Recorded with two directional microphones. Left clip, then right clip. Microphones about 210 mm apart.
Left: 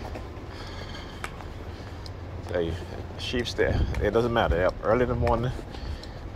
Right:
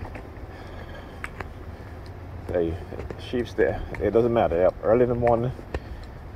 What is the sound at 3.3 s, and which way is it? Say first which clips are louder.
Speech: right 2 dB; 40° right (ahead or behind).